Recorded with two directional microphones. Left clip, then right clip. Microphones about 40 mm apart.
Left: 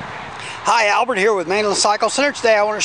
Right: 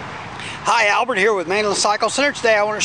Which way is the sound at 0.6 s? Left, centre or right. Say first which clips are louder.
Left 1 dB; centre.